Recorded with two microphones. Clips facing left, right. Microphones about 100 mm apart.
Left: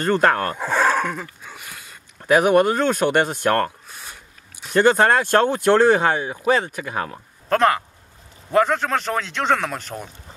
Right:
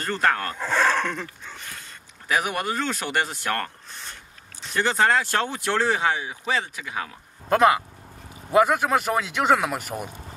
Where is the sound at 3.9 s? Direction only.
10° left (ahead or behind).